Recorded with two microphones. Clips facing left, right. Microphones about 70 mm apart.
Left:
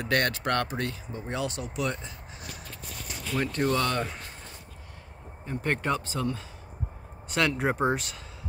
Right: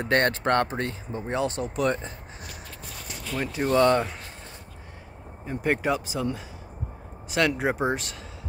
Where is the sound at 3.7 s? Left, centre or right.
Right.